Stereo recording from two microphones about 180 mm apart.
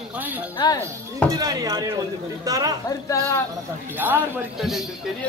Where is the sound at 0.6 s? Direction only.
25° left (ahead or behind).